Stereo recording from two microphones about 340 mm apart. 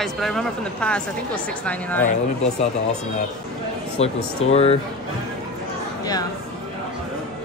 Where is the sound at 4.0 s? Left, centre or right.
Centre.